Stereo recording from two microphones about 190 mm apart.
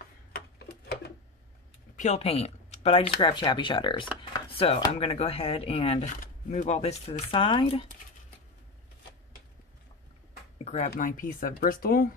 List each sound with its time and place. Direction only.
0.6 s tick-tock: 60° left (ahead or behind)
2.0 s speech: 35° left (ahead or behind)
10.6 s a sound: 35° left (ahead or behind)
10.9 s speech: 45° left (ahead or behind)